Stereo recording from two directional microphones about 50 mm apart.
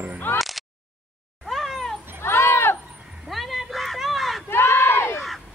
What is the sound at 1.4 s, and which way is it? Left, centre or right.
Cat, centre.